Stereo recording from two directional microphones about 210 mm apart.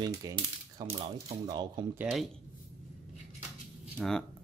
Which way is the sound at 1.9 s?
Centre (ahead or behind).